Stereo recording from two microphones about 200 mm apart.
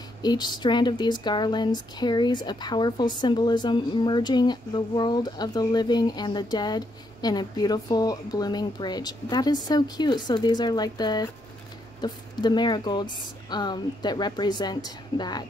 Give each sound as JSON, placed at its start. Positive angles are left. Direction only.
{"t": 0.2, "sound": "speech", "side_deg": 20}